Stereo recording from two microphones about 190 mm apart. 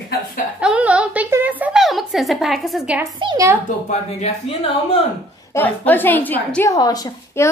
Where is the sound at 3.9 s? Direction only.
30° left (ahead or behind).